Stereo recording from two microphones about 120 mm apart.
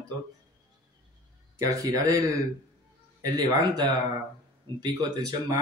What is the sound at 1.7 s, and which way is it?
Speech, 25° right (ahead or behind).